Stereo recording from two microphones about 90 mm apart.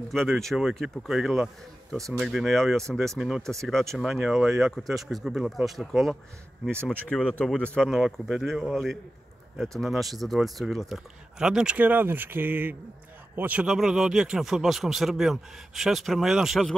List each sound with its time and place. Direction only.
0.1 s speech: 5° left (ahead or behind)
3.4 s speech: 5° left (ahead or behind)
7.8 s speech: centre (ahead or behind); by 13.7 s 15° right (ahead or behind)
13.7 s speech: 5° right (ahead or behind)